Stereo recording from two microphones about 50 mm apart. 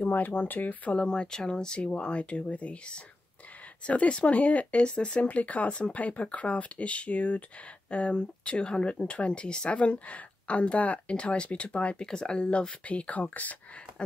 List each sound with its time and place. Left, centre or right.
0.0 s speech: left
1.0 s speech: centre
4.8 s speech: centre